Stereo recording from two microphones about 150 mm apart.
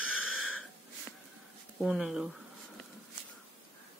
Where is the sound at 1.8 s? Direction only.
5° right (ahead or behind).